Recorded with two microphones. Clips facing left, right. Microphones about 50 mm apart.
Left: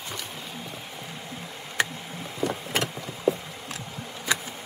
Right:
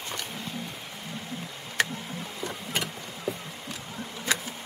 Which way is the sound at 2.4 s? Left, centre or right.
Left.